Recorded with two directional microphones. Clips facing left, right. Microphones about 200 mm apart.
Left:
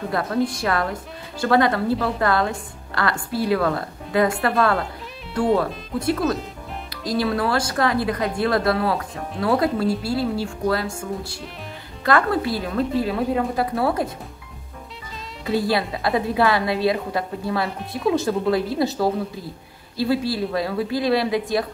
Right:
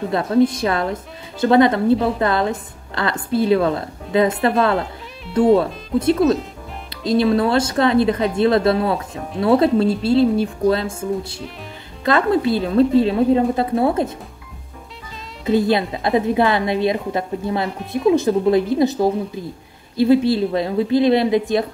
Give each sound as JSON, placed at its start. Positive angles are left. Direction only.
{"t": 0.5, "sound": "a woman's voice", "side_deg": -20}
{"t": 5.9, "sound": "a woman's voice", "side_deg": -20}
{"t": 15.4, "sound": "a woman's voice", "side_deg": -20}